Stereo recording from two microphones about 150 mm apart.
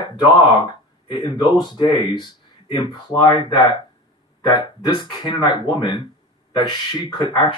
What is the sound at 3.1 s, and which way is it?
Speech, 30° left (ahead or behind).